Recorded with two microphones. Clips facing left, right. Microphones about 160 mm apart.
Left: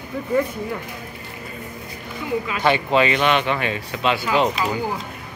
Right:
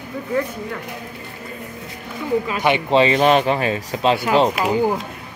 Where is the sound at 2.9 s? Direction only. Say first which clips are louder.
Right 7 dB; 30° right (ahead or behind).